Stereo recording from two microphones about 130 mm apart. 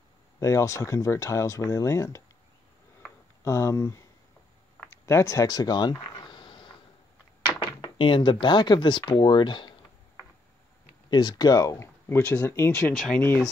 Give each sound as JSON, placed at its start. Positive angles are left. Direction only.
{"t": 0.4, "sound": "speech", "side_deg": 25}
{"t": 3.4, "sound": "speech", "side_deg": 20}
{"t": 6.0, "sound": "a sound", "side_deg": 35}
{"t": 7.6, "sound": "speech", "side_deg": 40}
{"t": 11.1, "sound": "speech", "side_deg": 35}
{"t": 12.2, "sound": "speech", "side_deg": 10}
{"t": 12.9, "sound": "speech", "side_deg": 0}